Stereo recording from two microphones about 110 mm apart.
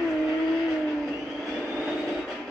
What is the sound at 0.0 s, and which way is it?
Vehicle, 5° right (ahead or behind).